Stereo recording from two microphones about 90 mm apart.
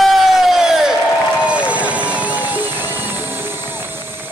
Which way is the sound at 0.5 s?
5° right (ahead or behind).